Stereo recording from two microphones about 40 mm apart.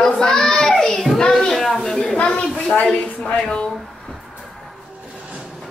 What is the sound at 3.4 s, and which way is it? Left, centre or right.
Speech, left.